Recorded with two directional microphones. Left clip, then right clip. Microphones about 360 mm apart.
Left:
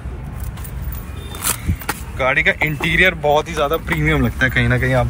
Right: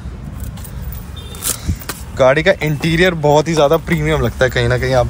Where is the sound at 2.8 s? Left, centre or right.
Right.